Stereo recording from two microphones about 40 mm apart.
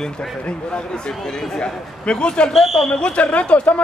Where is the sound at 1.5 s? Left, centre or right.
Left.